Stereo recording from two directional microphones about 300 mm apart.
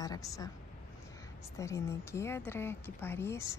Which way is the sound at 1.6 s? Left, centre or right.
Centre.